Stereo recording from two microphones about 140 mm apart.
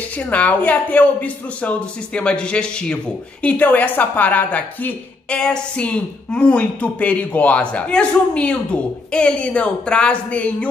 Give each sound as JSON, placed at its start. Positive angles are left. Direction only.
{"t": 0.2, "sound": "speech", "side_deg": 10}